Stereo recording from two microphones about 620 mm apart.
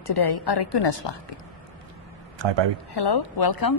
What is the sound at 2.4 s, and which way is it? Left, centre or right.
Speech, right.